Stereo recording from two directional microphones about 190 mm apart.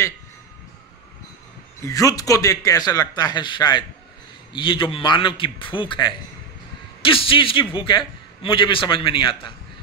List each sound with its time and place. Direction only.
1.9 s a man's voice: 20° left (ahead or behind)